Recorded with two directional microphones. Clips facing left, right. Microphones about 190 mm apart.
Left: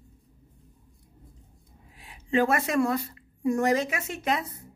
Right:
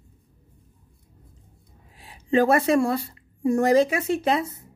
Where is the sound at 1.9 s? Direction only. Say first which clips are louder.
Right 4 dB; 35° right (ahead or behind).